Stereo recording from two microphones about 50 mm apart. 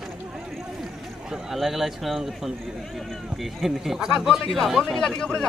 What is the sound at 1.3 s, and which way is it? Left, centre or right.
Speech, centre.